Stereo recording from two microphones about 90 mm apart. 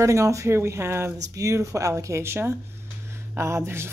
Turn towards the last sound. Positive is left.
turn(degrees=-30)  # may be behind; listen again after turning